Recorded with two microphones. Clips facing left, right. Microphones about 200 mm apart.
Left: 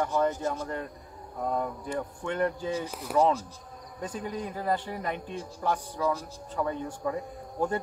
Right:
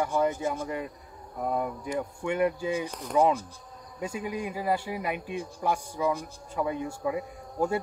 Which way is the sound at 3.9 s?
10° right (ahead or behind).